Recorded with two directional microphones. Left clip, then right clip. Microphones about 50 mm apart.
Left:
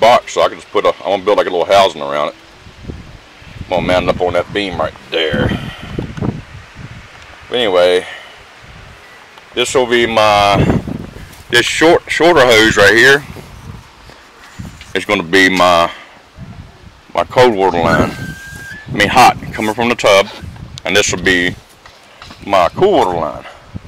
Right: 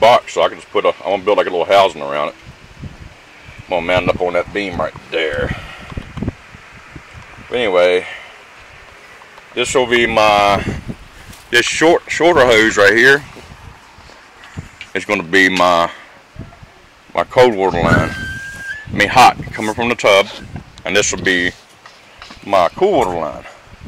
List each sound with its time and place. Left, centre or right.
0.0 s a sound: centre
1.9 s speech: centre
3.6 s speech: centre
7.5 s speech: centre
9.5 s speech: centre
11.5 s speech: left
14.9 s speech: left
17.1 s speech: centre
17.7 s speech: centre
18.9 s speech: left
19.8 s speech: left
22.5 s speech: centre